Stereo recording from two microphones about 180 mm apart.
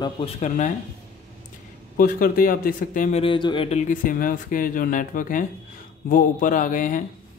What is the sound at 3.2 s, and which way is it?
Speech, 25° left (ahead or behind).